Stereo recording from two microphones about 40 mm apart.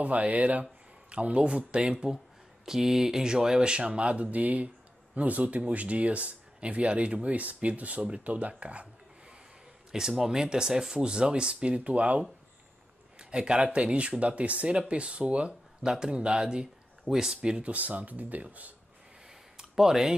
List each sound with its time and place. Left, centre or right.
0.0 s speech: right
2.6 s speech: centre; by 8.8 s right
9.9 s speech: centre; by 12.2 s right
13.2 s a man's voice: right
15.8 s speech: centre
17.6 s speech: right
19.7 s speech: centre